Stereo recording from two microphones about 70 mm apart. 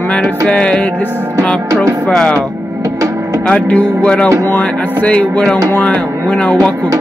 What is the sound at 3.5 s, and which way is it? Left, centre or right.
Music, centre.